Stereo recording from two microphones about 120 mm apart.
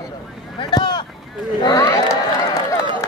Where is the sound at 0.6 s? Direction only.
35° left (ahead or behind).